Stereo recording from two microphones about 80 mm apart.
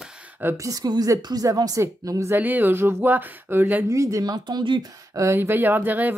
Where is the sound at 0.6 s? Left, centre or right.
Right.